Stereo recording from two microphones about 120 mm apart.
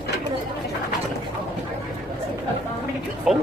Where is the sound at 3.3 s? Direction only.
5° right (ahead or behind).